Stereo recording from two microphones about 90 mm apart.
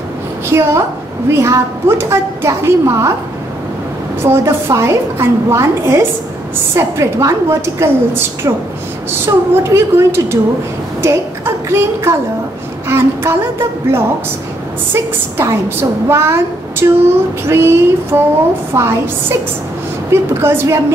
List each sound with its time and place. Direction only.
0.5 s a woman's voice: 30° right (ahead or behind)
4.2 s a woman's voice: 30° right (ahead or behind)
9.2 s a woman's voice: 30° right (ahead or behind)